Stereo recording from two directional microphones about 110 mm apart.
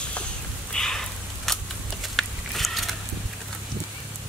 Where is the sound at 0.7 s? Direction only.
5° left (ahead or behind).